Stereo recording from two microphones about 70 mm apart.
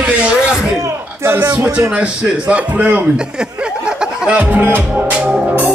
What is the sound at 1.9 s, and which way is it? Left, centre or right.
A man's voice, centre.